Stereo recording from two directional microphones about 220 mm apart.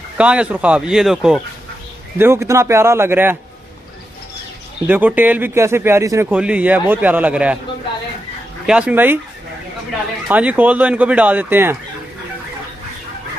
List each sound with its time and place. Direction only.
0.2 s speech: 5° right (ahead or behind)
4.8 s speech: 5° right (ahead or behind)
8.6 s speech: 5° right (ahead or behind)
10.2 s speech: 5° right (ahead or behind)